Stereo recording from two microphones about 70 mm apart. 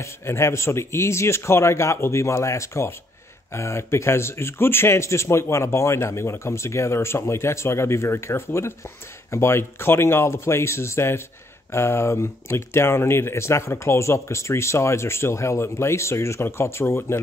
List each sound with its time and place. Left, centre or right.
0.0 s speech: left